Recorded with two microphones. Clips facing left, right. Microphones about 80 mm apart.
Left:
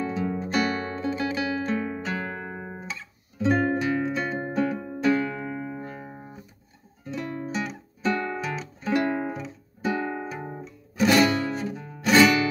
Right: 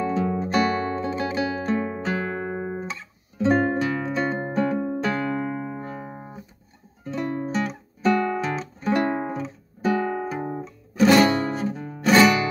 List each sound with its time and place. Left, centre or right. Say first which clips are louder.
0.0 s music: right 4 dB; right
10.4 s guitar: right 6 dB; right
11.1 s music: right 3 dB; right